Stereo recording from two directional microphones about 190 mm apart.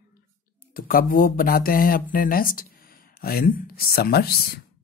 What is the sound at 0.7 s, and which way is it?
Speech, 50° left (ahead or behind).